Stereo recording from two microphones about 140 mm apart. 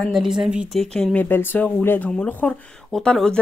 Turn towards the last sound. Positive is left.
turn(degrees=5)  # may be behind; listen again after turning